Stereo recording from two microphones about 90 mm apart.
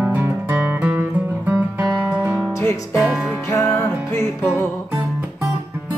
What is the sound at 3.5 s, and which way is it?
Music, 35° left (ahead or behind).